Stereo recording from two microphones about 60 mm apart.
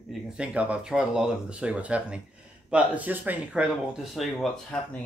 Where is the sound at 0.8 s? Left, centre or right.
Centre; by 3.3 s right.